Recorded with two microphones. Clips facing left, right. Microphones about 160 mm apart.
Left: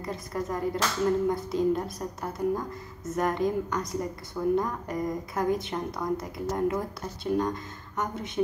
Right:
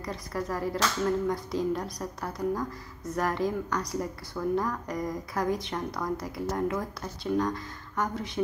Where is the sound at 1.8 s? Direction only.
25° left (ahead or behind).